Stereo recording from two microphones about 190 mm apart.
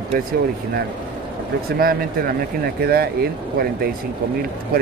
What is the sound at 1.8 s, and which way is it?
Speech, 50° right (ahead or behind).